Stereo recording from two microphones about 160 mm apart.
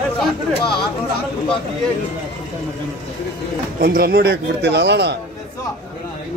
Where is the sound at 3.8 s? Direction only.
70° right (ahead or behind); by 5.1 s 90° right.